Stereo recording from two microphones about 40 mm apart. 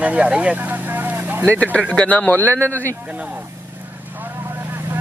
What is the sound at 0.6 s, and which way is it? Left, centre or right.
Speech, right.